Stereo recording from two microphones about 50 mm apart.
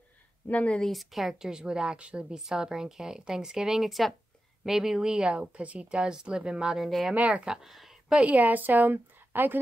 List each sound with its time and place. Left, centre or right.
0.5 s speech: left
0.9 s speech: centre
1.5 s a woman's voice: centre
6.8 s speech: centre
7.2 s speech: right
7.4 s speech: centre
8.3 s a woman's voice: right